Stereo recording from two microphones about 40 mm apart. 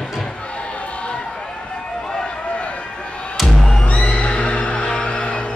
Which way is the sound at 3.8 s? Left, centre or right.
Left.